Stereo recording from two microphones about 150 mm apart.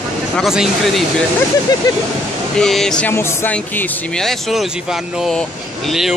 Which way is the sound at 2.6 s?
5° left (ahead or behind).